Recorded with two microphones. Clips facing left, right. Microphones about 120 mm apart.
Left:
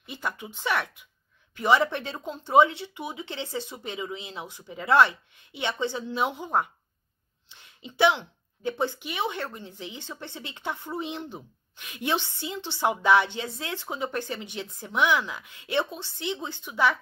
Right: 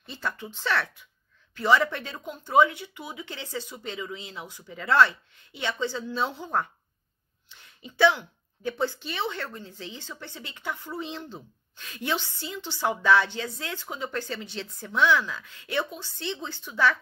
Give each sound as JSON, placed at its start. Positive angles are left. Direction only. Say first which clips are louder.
{"t": 0.0, "sound": "speech", "louder": "even", "side_deg": 15}